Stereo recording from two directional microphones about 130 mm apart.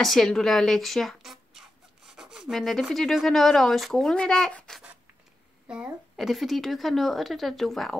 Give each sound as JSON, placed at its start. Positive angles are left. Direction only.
{"t": 0.0, "sound": "speech", "side_deg": 0}
{"t": 5.7, "sound": "speech", "side_deg": -5}